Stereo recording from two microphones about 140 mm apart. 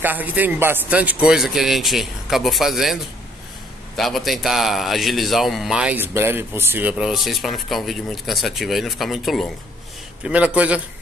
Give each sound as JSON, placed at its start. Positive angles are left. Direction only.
{"t": 0.0, "sound": "a man's voice", "side_deg": -10}